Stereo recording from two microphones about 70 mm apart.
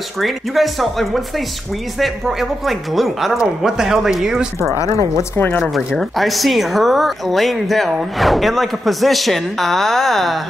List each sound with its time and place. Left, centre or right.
0.2 s speech: centre
4.7 s a woman's voice: left
5.6 s speech: centre